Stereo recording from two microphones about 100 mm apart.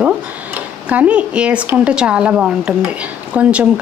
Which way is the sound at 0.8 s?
15° right (ahead or behind).